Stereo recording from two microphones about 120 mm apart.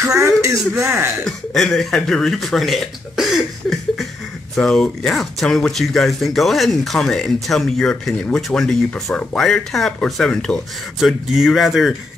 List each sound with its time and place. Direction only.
0.0 s speech: 25° right (ahead or behind)
1.2 s speech: centre (ahead or behind)
4.6 s speech: 5° left (ahead or behind)